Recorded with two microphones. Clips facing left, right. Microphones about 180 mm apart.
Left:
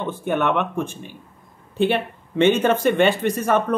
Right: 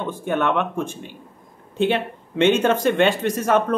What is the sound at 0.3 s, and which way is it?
Speech, 5° left (ahead or behind).